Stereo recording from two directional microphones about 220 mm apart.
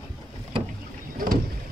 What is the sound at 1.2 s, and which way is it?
Vehicle, 40° right (ahead or behind).